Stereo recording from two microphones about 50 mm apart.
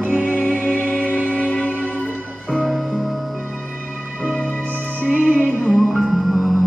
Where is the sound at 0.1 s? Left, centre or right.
Left.